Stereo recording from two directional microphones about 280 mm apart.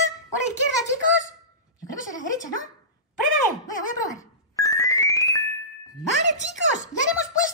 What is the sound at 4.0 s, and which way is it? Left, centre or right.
Ringtone, centre.